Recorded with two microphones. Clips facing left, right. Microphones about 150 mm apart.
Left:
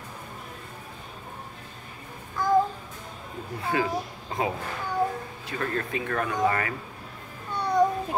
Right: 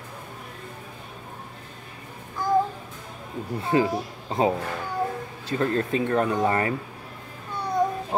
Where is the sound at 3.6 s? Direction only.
30° right (ahead or behind).